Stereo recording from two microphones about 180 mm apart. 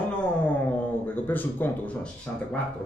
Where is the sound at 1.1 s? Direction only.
10° left (ahead or behind).